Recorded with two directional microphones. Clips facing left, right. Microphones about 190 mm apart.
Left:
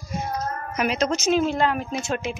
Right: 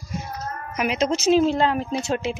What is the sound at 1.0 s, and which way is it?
Speech, 30° right (ahead or behind).